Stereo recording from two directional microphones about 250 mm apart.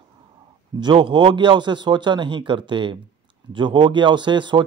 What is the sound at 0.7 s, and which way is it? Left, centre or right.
Speech, centre.